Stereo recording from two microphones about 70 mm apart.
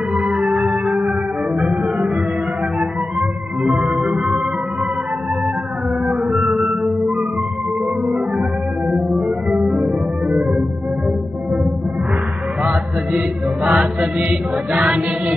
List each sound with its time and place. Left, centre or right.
0.1 s music: centre
2.8 s music: centre
6.3 s music: centre
9.6 s music: centre
13.7 s mantra: centre